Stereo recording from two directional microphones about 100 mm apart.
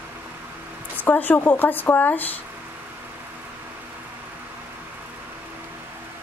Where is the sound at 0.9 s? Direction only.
20° left (ahead or behind).